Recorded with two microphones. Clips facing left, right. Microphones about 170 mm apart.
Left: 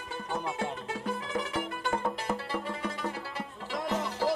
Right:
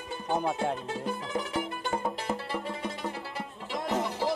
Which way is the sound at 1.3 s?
25° right (ahead or behind).